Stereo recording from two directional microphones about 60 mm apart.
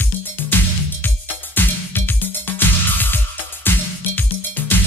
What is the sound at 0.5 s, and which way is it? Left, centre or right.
Music, left.